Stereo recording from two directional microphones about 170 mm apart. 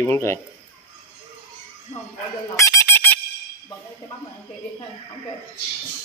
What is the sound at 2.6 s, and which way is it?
Fowl, 15° left (ahead or behind).